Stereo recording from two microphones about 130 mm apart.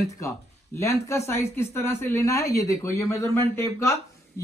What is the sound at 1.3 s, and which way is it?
Speech, 20° left (ahead or behind).